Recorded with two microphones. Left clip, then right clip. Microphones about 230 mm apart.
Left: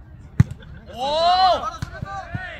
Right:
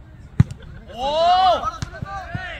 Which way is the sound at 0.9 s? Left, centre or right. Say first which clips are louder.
Right 1 dB; left.